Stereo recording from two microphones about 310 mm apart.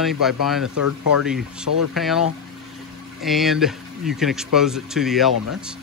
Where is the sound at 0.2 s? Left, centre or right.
Centre.